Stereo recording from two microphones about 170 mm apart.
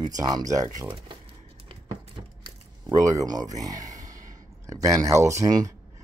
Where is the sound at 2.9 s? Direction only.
20° right (ahead or behind).